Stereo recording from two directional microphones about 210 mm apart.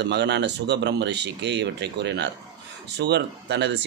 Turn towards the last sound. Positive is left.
turn(degrees=-55)  # may be behind; listen again after turning